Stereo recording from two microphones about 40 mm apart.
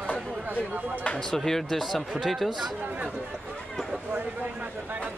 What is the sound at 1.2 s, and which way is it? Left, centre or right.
Speech, centre.